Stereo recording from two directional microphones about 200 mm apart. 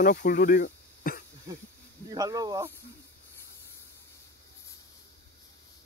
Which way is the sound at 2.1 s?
20° right (ahead or behind).